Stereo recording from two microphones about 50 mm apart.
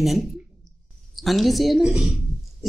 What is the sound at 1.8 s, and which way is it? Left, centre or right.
Speech, centre.